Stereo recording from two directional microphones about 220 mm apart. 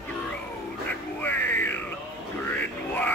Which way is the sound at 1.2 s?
10° left (ahead or behind).